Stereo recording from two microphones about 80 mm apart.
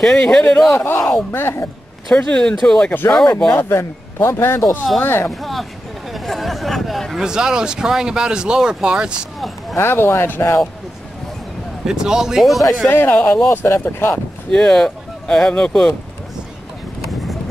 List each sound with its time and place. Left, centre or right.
0.0 s speech: centre
0.7 s a man's voice: left
2.0 s speech: centre
3.4 s a man's voice: left
5.3 s speech: centre
9.8 s a man's voice: left
11.8 s speech: centre
12.9 s speech: left
14.5 s speech: centre